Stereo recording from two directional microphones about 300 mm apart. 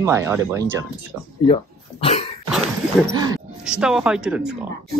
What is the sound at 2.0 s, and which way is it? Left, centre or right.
Cough, left.